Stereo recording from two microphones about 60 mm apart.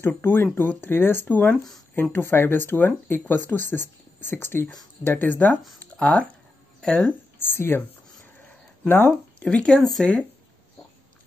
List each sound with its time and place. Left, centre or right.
0.2 s speech: left; by 7.1 s centre
7.3 s speech: left
8.8 s speech: left
9.4 s speech: centre